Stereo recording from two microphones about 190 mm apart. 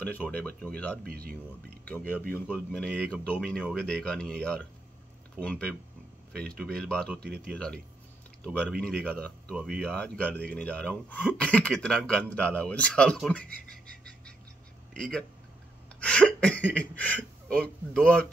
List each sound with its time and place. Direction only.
0.3 s speech: 5° left (ahead or behind)
1.0 s speech: 50° right (ahead or behind)
1.9 s a man's voice: 10° left (ahead or behind)
15.0 s a man's voice: centre (ahead or behind)